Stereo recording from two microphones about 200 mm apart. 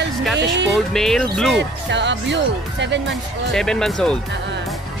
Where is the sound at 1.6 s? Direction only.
60° right (ahead or behind).